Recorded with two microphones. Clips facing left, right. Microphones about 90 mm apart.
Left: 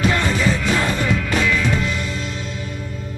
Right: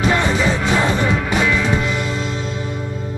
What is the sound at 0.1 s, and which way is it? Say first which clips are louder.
Music: right 2 dB; 20° right (ahead or behind).